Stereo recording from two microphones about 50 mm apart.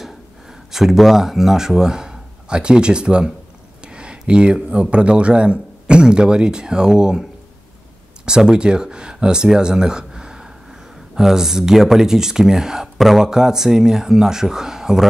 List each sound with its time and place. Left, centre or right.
0.0 s speech: centre
8.3 s speech: centre